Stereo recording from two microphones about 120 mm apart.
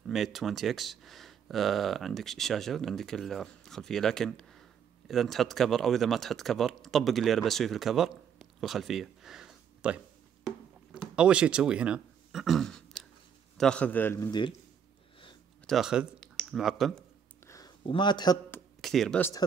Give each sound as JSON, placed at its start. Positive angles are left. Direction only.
{"t": 0.0, "sound": "speech", "side_deg": 0}
{"t": 10.4, "sound": "a sound", "side_deg": -5}
{"t": 13.6, "sound": "a man's voice", "side_deg": 10}
{"t": 15.6, "sound": "speech", "side_deg": 0}
{"t": 17.5, "sound": "a sound", "side_deg": 30}
{"t": 17.8, "sound": "a man's voice", "side_deg": 40}
{"t": 18.8, "sound": "speech", "side_deg": 0}